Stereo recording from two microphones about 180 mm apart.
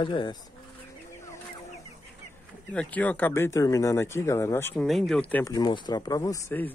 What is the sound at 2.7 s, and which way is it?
Speech, 10° left (ahead or behind).